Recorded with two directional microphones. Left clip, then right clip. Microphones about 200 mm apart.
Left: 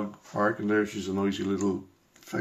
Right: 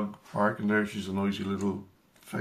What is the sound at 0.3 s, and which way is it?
Speech, 10° left (ahead or behind).